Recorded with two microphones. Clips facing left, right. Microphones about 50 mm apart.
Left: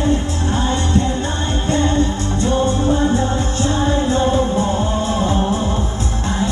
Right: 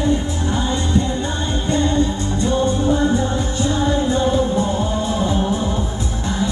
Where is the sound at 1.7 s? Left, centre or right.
Left.